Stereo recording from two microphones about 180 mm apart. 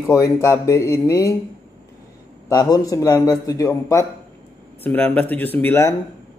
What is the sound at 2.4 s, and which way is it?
A man's voice, 20° left (ahead or behind).